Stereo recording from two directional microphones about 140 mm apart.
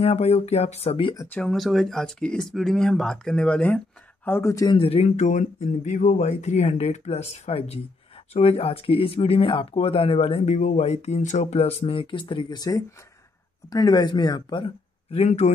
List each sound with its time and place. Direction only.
0.0 s speech: 50° left (ahead or behind)
1.1 s speech: 20° left (ahead or behind)
1.4 s speech: centre (ahead or behind); by 4.6 s 20° left (ahead or behind)
4.6 s speech: 40° left (ahead or behind)